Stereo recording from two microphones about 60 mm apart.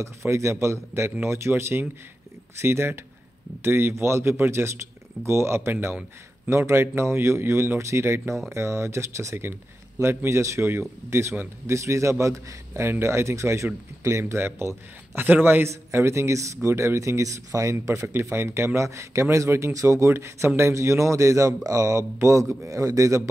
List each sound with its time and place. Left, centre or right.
0.0 s a man's voice: right
12.8 s speech: right
15.1 s a man's voice: right
15.6 s a man's voice: right
17.7 s speech: right
18.0 s a man's voice: right
20.1 s a man's voice: right